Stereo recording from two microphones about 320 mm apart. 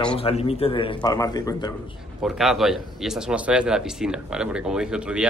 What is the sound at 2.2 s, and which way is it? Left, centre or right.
Speech, centre.